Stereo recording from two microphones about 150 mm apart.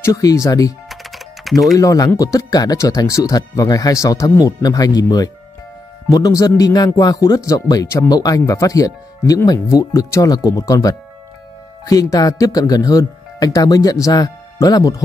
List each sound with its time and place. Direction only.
0.0 s speech: 20° left (ahead or behind)
0.8 s typing: centre (ahead or behind)
1.8 s speech: 20° left (ahead or behind)